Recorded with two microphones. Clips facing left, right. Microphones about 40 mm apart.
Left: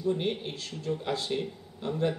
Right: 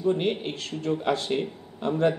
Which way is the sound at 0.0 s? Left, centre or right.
Right.